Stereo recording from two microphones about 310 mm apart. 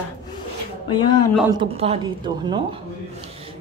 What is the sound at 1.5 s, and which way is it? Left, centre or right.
Speech, centre.